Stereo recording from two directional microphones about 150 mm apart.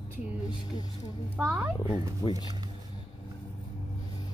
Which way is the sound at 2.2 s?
25° left (ahead or behind).